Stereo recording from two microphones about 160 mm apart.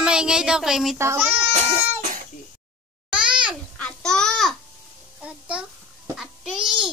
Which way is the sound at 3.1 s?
5° right (ahead or behind).